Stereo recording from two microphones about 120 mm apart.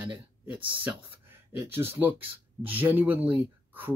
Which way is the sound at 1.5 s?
20° right (ahead or behind).